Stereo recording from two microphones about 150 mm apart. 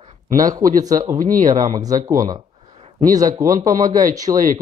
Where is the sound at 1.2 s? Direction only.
60° right (ahead or behind).